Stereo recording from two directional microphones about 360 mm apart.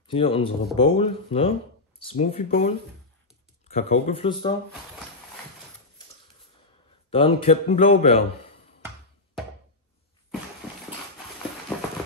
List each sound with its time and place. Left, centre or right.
0.0 s speech: centre
7.1 s speech: centre